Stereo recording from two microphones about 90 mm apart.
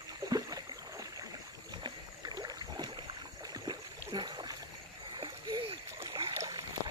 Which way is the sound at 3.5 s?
50° right (ahead or behind).